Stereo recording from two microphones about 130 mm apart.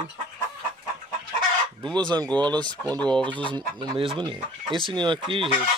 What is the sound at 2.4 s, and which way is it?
Speech, 35° right (ahead or behind).